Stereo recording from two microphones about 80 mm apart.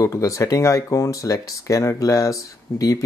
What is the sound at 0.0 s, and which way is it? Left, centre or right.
Speech, left.